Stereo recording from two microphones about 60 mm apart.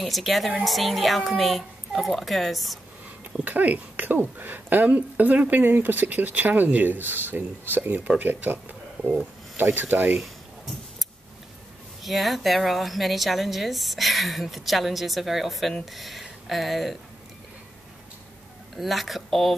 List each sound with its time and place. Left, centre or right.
0.0 s a woman's voice: centre
3.3 s speech: right
10.1 s a sound: centre
12.0 s a woman's voice: centre
18.8 s a woman's voice: centre